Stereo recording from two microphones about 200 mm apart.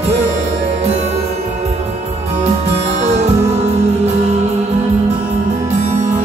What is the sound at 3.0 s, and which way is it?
Music, 35° right (ahead or behind).